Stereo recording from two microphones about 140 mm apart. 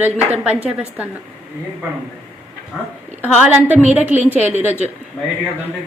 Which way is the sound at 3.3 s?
10° right (ahead or behind).